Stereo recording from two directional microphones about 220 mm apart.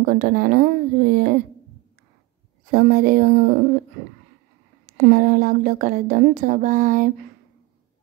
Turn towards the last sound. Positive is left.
turn(degrees=-35)  # may be behind; listen again after turning